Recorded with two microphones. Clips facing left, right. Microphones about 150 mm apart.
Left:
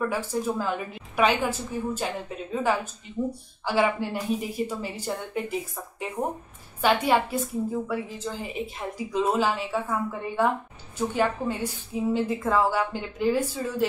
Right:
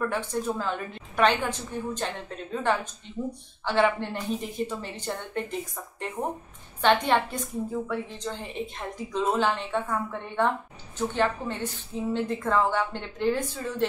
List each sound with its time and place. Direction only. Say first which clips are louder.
0.0 s a woman's voice: left 1 dB; 5° left (ahead or behind)